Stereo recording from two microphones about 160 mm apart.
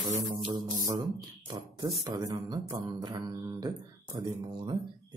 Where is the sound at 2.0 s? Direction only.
25° right (ahead or behind).